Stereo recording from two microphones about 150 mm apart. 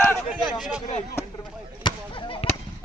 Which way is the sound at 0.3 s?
5° right (ahead or behind).